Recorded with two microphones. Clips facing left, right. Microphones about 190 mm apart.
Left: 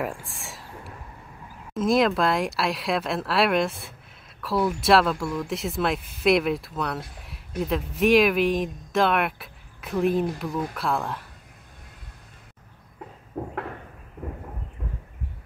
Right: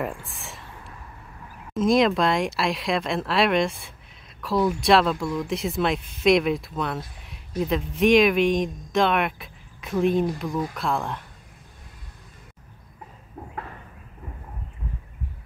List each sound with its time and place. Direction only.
0.0 s speech: centre (ahead or behind)
1.7 s speech: centre (ahead or behind)
13.4 s a sound: 50° left (ahead or behind)